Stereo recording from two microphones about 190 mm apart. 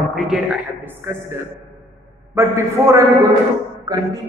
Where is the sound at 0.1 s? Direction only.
Centre (ahead or behind).